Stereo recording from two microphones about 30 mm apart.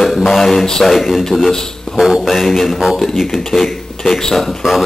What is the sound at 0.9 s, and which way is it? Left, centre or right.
Speech, centre.